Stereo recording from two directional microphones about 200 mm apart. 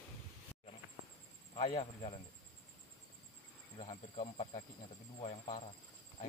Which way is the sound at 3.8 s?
25° left (ahead or behind).